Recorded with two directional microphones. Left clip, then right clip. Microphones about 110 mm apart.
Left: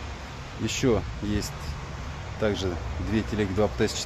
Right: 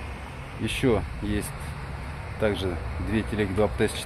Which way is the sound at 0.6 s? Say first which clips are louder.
Even; 20° left (ahead or behind).